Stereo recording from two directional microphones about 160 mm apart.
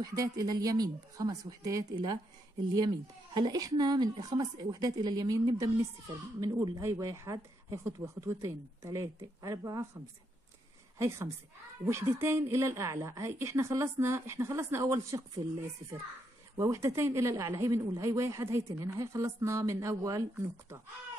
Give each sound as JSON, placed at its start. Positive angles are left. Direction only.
{"t": 0.0, "sound": "speech", "side_deg": -20}
{"t": 11.0, "sound": "a woman's voice", "side_deg": -15}
{"t": 16.5, "sound": "speech", "side_deg": -20}